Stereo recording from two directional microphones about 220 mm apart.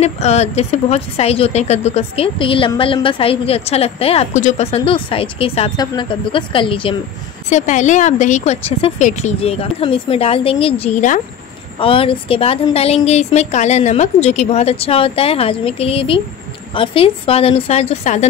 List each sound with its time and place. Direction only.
0.0 s a woman's voice: 30° left (ahead or behind)
7.4 s a woman's voice: 35° left (ahead or behind)